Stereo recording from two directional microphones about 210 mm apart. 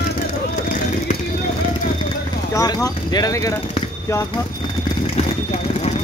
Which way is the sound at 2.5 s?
15° left (ahead or behind).